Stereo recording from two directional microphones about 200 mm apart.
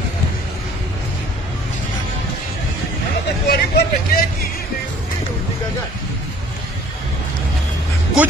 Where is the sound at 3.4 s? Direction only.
50° left (ahead or behind).